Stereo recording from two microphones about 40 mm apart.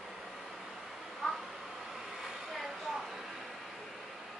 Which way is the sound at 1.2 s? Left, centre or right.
Centre.